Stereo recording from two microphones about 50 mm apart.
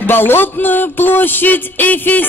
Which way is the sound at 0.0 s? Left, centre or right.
Left.